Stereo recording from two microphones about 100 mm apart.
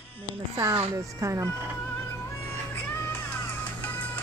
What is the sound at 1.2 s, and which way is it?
Speech, 35° right (ahead or behind).